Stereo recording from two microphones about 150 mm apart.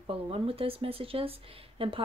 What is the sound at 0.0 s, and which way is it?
Speech, 40° right (ahead or behind).